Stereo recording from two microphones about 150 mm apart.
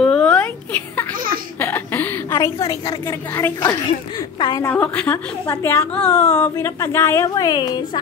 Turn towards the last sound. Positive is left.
turn(degrees=30)  # may be behind; listen again after turning